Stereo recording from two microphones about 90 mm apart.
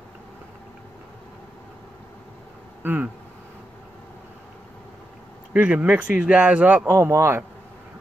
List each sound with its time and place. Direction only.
2.8 s speech: 20° right (ahead or behind)
5.5 s a man's voice: 15° right (ahead or behind)
7.0 s speech: 35° right (ahead or behind)